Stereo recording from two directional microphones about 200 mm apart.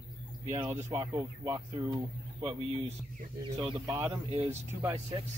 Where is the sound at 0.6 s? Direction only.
15° right (ahead or behind).